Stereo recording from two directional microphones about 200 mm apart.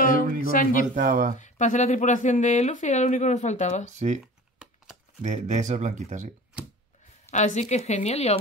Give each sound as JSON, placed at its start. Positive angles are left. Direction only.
{"t": 0.0, "sound": "a sound", "side_deg": 45}
{"t": 0.9, "sound": "speech", "side_deg": -40}
{"t": 1.4, "sound": "speech", "side_deg": 35}
{"t": 3.8, "sound": "speech", "side_deg": -35}
{"t": 5.2, "sound": "speech", "side_deg": -35}
{"t": 7.2, "sound": "speech", "side_deg": 35}